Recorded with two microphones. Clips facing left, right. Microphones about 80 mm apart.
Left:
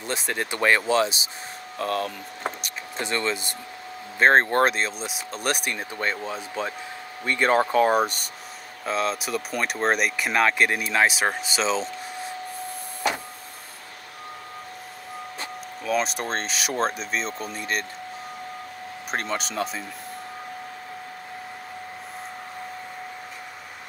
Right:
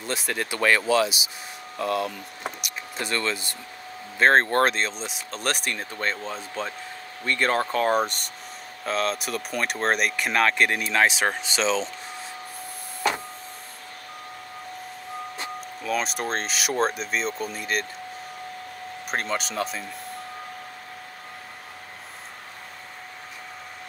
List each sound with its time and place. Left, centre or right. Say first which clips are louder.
0.0 s speech: even; left
1.8 s speech: right 1 dB; left
2.4 s speech: left 3 dB; left; by 11.9 s centre
15.8 s speech: left 2 dB; centre
19.0 s speech: even; centre